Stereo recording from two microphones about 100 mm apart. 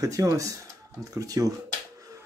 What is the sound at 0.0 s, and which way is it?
Speech, 35° right (ahead or behind).